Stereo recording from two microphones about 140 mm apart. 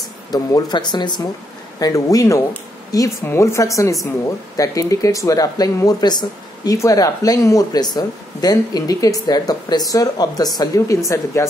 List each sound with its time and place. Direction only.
0.3 s speech: 25° left (ahead or behind)